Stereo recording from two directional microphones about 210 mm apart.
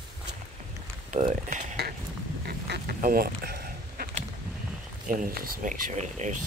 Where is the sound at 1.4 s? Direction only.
45° right (ahead or behind).